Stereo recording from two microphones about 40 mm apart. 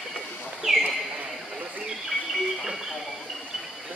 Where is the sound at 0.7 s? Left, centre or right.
Centre.